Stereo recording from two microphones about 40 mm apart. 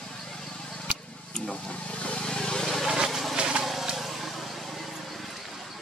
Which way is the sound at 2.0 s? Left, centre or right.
Left.